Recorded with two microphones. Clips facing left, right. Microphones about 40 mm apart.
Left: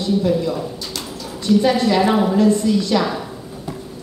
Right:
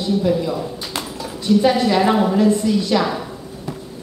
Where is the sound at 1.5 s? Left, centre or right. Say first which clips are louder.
Even; centre.